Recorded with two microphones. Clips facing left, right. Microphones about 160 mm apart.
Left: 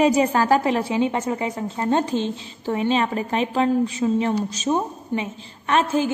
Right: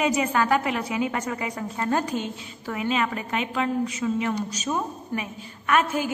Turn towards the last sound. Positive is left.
turn(degrees=30)  # may be behind; listen again after turning